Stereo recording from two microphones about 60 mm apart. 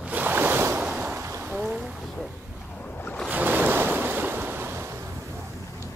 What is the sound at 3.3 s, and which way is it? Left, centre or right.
Waves, right.